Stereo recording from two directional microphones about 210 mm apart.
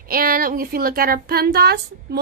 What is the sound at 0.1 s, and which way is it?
A woman's voice, 45° right (ahead or behind).